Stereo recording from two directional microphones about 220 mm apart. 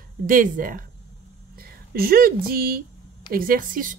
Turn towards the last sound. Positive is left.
turn(degrees=-40)  # may be behind; listen again after turning